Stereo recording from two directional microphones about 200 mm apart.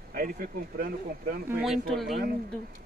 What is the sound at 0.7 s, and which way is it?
Speech, 45° right (ahead or behind).